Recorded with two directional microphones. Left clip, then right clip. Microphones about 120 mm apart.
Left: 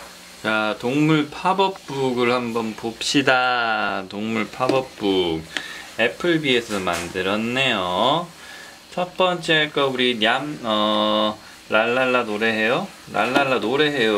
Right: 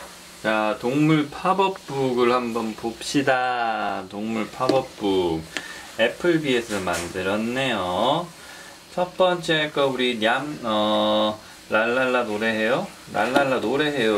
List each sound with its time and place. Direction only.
0.4 s speech: 45° left (ahead or behind)
3.1 s speech: 35° left (ahead or behind)